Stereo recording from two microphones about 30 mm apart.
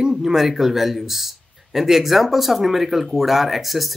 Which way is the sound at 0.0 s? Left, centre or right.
Centre.